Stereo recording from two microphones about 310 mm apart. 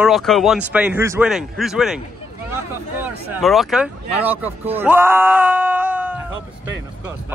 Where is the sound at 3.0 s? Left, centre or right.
Centre.